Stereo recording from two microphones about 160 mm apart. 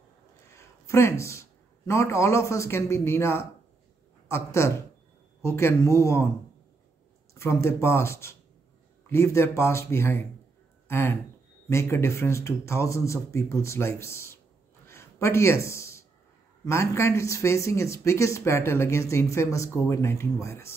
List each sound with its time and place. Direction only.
0.5 s a man's voice: 15° left (ahead or behind)
7.3 s speech: 15° left (ahead or behind)
14.9 s a sound: 15° left (ahead or behind)
16.6 s speech: 15° left (ahead or behind)